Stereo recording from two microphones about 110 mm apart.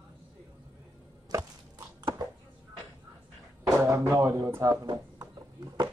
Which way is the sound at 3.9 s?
30° right (ahead or behind).